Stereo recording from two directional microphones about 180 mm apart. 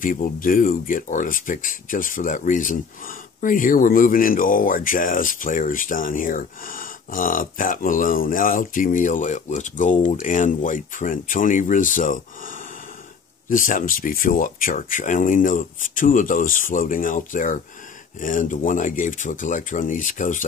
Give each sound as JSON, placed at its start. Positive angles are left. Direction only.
{"t": 0.0, "sound": "speech", "side_deg": 50}